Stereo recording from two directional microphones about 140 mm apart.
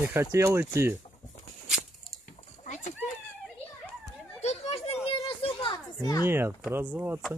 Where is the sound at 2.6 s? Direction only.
60° left (ahead or behind).